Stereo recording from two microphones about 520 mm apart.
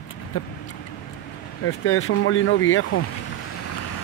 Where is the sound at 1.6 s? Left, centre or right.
Left.